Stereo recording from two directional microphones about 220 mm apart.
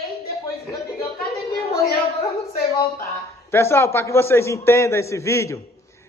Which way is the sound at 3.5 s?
10° left (ahead or behind).